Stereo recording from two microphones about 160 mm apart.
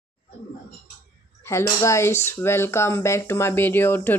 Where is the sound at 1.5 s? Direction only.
20° left (ahead or behind).